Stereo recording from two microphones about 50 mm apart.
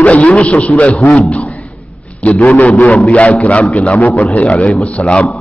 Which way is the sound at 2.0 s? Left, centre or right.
Left.